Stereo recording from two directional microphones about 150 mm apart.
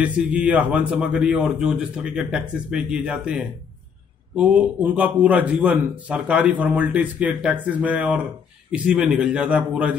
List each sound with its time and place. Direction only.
0.0 s a man's voice: 10° right (ahead or behind)